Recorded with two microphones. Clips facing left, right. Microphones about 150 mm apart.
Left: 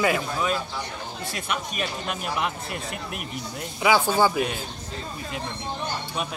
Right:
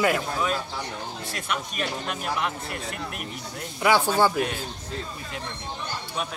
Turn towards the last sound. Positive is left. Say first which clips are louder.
# even
turn(degrees=0)  # may be behind; listen again after turning